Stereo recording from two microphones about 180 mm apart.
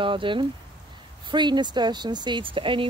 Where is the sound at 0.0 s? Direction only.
30° right (ahead or behind).